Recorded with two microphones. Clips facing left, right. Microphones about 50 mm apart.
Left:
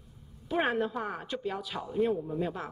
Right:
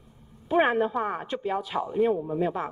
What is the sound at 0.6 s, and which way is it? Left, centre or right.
A woman's voice, right.